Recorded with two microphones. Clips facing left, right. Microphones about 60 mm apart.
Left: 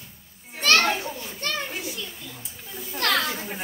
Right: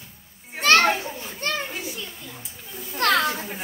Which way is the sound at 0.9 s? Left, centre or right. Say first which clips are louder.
Even; centre.